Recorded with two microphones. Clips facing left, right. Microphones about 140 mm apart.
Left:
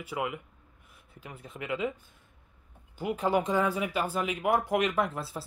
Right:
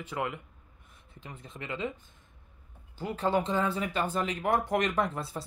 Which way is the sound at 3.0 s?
15° left (ahead or behind).